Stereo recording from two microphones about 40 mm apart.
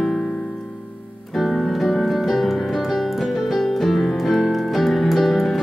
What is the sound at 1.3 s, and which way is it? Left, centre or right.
Music, centre.